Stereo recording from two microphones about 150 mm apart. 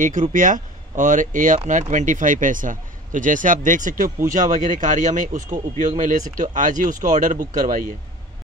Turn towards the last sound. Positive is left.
turn(degrees=-65)  # may be behind; listen again after turning